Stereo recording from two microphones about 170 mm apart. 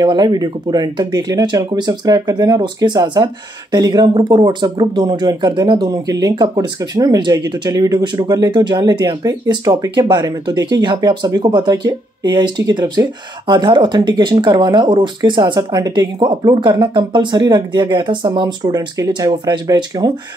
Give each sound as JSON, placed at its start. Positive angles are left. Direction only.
{"t": 0.0, "sound": "speech", "side_deg": -25}